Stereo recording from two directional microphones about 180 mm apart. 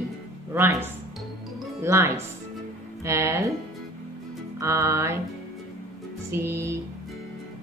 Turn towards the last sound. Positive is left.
turn(degrees=-15)  # may be behind; listen again after turning